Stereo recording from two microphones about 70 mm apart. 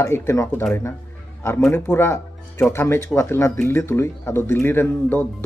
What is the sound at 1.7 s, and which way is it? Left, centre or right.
Speech, left.